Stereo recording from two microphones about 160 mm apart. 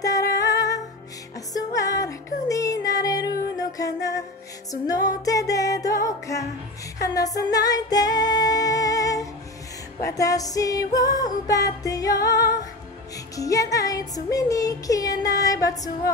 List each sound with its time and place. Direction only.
0.0 s music: 20° left (ahead or behind)